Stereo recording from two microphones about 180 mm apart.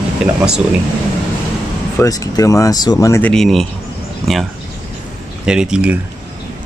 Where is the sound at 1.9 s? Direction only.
20° left (ahead or behind).